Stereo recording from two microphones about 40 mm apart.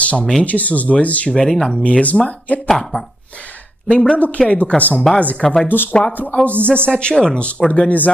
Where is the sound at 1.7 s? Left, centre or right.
Left.